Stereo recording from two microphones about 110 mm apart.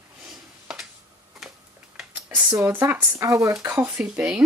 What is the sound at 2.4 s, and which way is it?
Speech, 20° right (ahead or behind).